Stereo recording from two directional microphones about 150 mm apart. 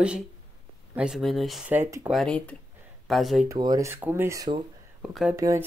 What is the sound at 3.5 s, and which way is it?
Speech, 25° right (ahead or behind).